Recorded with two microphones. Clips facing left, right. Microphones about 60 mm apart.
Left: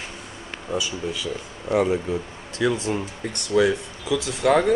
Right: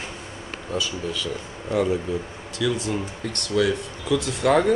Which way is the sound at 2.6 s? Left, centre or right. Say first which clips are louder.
Left 2 dB; left.